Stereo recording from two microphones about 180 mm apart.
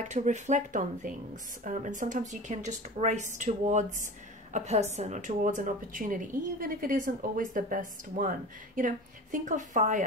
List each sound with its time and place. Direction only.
0.1 s a woman's voice: 40° right (ahead or behind)